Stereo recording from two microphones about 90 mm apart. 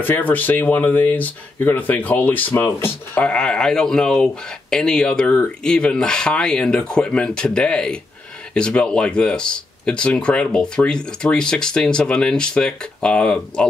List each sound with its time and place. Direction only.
0.0 s speech: 20° left (ahead or behind)